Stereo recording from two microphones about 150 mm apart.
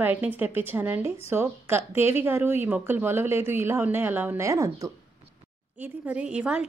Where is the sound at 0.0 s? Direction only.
10° right (ahead or behind).